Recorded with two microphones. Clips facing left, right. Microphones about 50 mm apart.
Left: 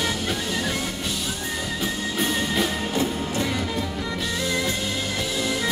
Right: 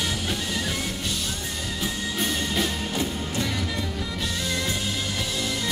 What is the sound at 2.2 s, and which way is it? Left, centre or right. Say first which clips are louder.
Music: left 3 dB; centre.